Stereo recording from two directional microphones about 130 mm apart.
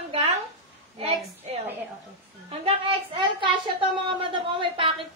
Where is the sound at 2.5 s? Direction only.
45° right (ahead or behind).